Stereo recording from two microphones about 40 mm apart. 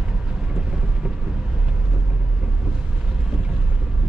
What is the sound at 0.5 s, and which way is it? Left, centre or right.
Vehicle, centre.